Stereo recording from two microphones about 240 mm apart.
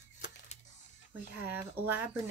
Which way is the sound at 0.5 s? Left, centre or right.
Left.